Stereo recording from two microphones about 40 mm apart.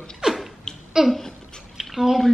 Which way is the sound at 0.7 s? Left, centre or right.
Centre.